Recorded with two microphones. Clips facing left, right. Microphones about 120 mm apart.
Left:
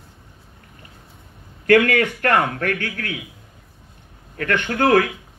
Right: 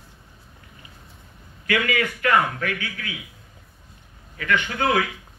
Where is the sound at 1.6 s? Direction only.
60° left (ahead or behind).